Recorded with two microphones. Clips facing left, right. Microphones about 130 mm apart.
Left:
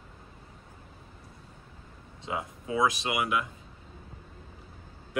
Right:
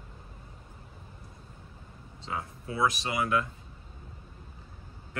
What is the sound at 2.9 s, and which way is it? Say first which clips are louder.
Speech: left 1 dB; 20° left (ahead or behind).